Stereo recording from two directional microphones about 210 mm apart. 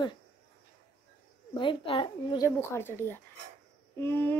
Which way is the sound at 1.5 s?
25° left (ahead or behind).